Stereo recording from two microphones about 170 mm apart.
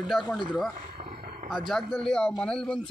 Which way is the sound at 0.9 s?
35° right (ahead or behind).